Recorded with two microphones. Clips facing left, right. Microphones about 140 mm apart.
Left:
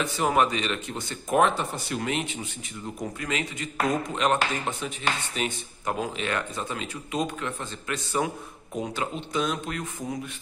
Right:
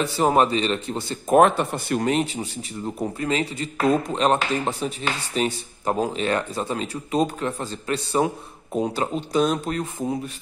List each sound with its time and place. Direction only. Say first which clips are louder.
0.0 s speech: right 4 dB; 35° right (ahead or behind)
1.3 s speech: right 6 dB; 55° right (ahead or behind)
2.0 s speech: right 7 dB; 35° right (ahead or behind)